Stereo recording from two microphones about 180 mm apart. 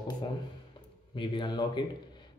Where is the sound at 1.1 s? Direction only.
25° left (ahead or behind).